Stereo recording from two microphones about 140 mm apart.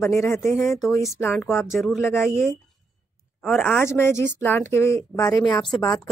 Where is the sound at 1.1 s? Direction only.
15° left (ahead or behind).